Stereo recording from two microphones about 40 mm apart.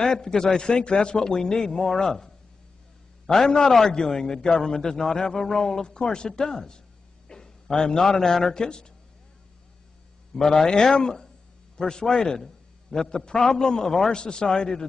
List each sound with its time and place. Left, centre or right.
0.0 s a man's voice: centre
10.3 s a man's voice: centre